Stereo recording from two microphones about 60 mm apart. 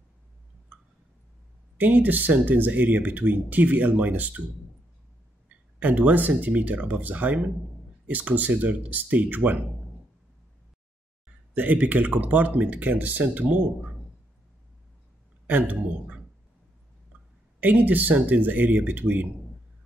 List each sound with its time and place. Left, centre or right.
1.8 s speech: right
5.5 s speech: right
11.5 s speech: right
15.4 s speech: right
17.6 s speech: right